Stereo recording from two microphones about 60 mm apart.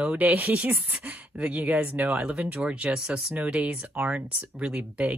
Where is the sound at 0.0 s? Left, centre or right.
Right.